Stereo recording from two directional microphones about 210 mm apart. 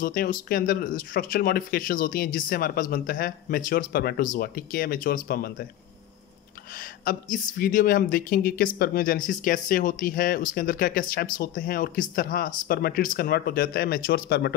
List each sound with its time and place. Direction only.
0.0 s speech: 45° left (ahead or behind)
6.7 s speech: 45° left (ahead or behind)